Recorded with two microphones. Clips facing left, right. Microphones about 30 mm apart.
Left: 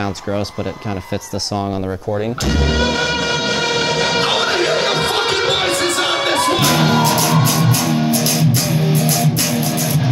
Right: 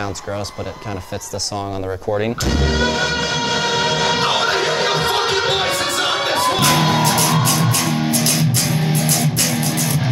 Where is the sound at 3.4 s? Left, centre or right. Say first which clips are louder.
Left 1 dB; left.